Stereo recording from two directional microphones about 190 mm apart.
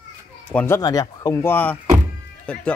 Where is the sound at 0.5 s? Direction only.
10° left (ahead or behind).